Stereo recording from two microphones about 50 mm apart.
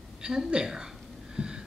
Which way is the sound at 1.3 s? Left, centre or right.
Centre.